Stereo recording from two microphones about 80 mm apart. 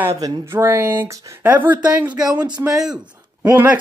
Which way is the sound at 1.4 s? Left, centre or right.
Right.